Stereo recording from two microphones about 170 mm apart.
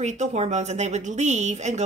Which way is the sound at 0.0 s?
45° right (ahead or behind).